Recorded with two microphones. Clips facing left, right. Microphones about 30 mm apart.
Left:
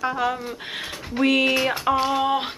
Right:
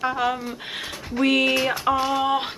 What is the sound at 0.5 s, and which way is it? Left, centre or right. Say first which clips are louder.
Speech: even; centre.